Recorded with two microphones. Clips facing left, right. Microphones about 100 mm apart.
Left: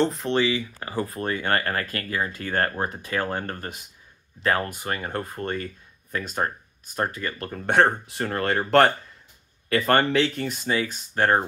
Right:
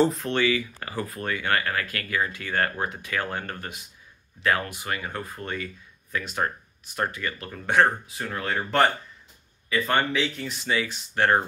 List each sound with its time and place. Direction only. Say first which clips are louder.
0.2 s speech: left 1 dB; 25° left (ahead or behind); by 8.6 s 55° left (ahead or behind)
8.6 s speech: left 4 dB; 70° left (ahead or behind)
9.7 s speech: left 4 dB; 60° left (ahead or behind); by 11.4 s 35° left (ahead or behind)